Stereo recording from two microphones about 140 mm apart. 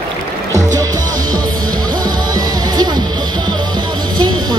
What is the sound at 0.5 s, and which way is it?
Music, 25° right (ahead or behind).